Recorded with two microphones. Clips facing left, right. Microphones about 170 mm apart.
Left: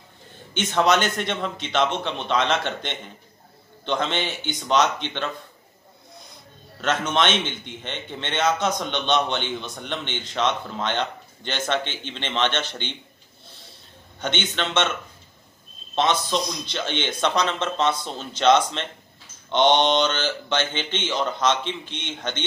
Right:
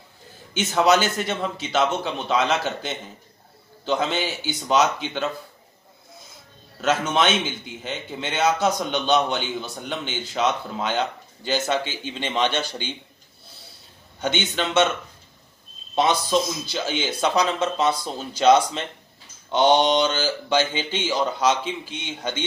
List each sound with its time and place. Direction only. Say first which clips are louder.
0.6 s a man's voice: right 1 dB; 5° right (ahead or behind)
14.2 s a man's voice: right 2 dB; 10° right (ahead or behind)
15.9 s a man's voice: right 2 dB; 10° right (ahead or behind)